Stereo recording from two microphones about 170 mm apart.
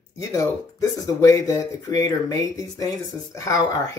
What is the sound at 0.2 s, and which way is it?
Speech, 20° left (ahead or behind).